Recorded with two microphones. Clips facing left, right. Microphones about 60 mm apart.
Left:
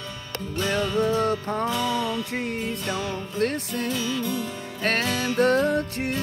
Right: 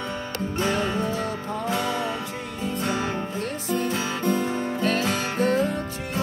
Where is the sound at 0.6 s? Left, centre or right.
Right.